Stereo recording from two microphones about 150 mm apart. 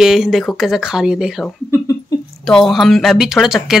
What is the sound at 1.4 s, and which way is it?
Speech, 15° left (ahead or behind).